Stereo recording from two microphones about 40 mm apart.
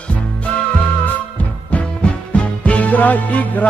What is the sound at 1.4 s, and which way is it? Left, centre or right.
Music, left.